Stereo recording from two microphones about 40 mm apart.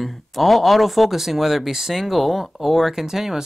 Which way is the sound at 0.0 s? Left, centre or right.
Centre.